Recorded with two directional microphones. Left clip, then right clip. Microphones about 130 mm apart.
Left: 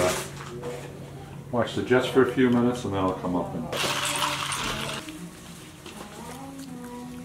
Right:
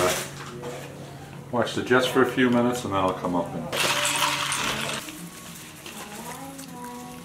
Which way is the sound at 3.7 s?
Centre (ahead or behind).